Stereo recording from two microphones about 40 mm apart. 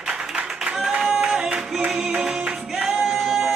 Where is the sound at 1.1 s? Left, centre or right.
Centre.